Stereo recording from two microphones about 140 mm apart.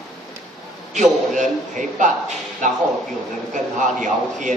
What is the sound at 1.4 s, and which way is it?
Speech, 65° right (ahead or behind).